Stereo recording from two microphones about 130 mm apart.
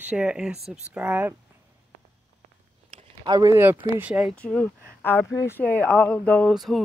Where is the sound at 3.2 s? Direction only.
30° right (ahead or behind).